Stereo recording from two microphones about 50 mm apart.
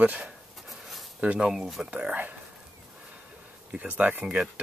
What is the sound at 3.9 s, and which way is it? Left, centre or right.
Speech, right.